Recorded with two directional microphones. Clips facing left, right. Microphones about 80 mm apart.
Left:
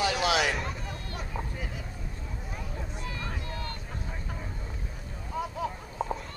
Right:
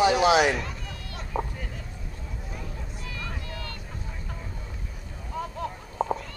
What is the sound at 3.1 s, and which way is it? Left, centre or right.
Boat, left.